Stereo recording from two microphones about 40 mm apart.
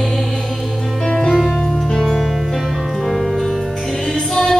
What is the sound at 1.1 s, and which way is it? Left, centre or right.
Music, centre.